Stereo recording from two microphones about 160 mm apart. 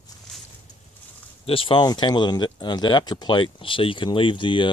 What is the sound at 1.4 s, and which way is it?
Speech, 35° left (ahead or behind).